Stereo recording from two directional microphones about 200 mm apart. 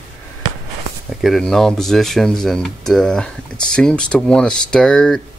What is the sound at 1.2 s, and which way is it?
Speech, centre (ahead or behind).